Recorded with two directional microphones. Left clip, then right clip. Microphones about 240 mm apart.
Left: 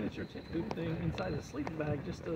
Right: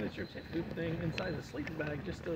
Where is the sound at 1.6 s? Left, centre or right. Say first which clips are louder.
Left 2 dB; left.